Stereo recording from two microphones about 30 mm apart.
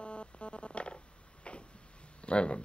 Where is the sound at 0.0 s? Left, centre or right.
Left.